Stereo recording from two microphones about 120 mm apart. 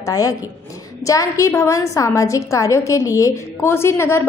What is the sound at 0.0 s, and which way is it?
A woman's voice, 30° left (ahead or behind).